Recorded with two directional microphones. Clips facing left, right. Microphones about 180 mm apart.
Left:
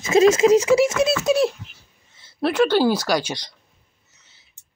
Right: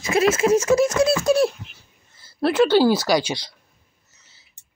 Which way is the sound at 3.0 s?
10° right (ahead or behind).